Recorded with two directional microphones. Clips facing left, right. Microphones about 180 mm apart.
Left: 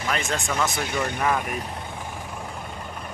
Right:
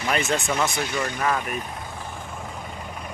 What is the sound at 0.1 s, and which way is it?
Speech, 5° right (ahead or behind).